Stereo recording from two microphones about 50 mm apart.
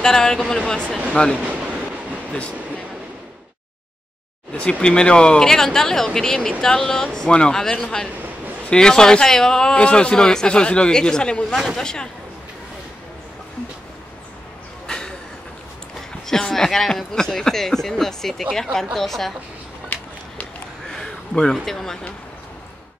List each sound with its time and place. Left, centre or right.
0.0 s a man's voice: centre
4.6 s a man's voice: left
11.5 s a woman's voice: centre
11.8 s a man's voice: centre
14.9 s a sound: centre
16.3 s a man's voice: centre
19.9 s a sound: left
20.9 s a sound: centre
21.5 s a man's voice: centre